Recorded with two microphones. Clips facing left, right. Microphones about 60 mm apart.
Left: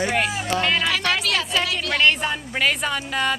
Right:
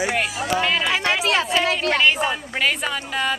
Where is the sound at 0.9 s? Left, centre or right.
Right.